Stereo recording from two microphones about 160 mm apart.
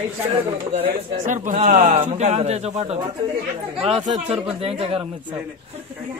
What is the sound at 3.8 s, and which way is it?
Speech, 30° right (ahead or behind).